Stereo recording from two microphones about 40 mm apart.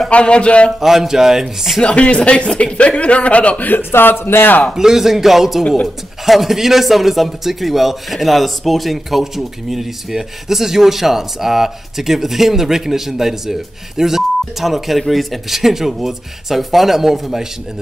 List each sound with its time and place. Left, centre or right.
0.1 s a man's voice: left
0.7 s a man's voice: centre
1.8 s speech: left
3.9 s speech: left
4.7 s a man's voice: centre